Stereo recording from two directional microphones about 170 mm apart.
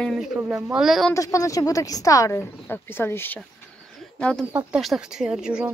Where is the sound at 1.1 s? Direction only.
20° left (ahead or behind).